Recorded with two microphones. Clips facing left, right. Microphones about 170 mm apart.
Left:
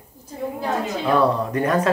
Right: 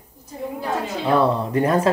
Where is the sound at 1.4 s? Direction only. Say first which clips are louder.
Right 1 dB; 30° right (ahead or behind).